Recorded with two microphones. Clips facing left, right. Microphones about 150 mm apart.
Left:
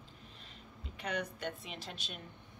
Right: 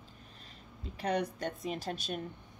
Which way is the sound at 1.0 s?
35° right (ahead or behind).